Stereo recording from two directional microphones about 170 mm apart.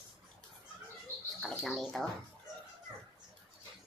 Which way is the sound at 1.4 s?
Centre (ahead or behind).